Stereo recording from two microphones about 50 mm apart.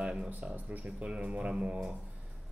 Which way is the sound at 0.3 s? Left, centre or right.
Right.